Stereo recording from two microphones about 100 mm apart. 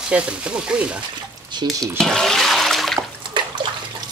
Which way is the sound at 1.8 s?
5° left (ahead or behind).